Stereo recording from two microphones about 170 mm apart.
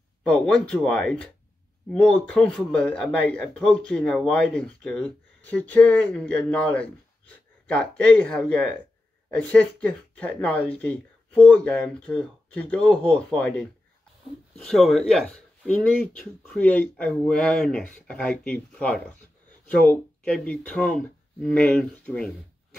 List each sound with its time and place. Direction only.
0.2 s speech: 5° left (ahead or behind)